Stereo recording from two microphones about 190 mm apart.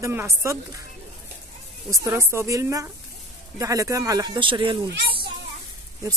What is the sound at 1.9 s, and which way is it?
Speech, 15° right (ahead or behind).